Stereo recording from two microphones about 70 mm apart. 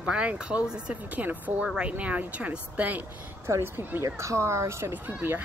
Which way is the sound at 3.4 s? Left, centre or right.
Right.